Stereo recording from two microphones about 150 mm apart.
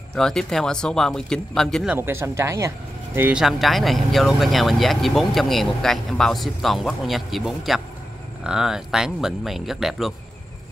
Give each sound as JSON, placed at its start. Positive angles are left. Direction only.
{"t": 0.1, "sound": "speech", "side_deg": 5}
{"t": 2.0, "sound": "speech", "side_deg": -15}
{"t": 3.2, "sound": "speech", "side_deg": -10}